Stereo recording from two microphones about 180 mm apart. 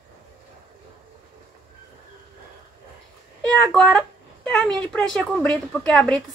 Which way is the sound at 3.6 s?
5° left (ahead or behind).